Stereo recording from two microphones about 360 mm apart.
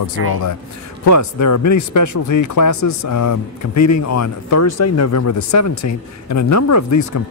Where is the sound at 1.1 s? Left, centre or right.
Left.